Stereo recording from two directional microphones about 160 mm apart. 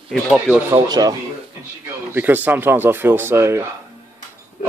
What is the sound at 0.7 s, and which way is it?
Speech, 25° right (ahead or behind).